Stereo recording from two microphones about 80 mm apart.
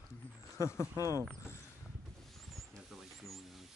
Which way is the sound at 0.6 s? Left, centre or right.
Left.